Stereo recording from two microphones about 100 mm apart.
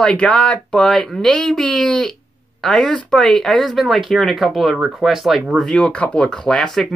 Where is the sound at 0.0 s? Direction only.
10° left (ahead or behind).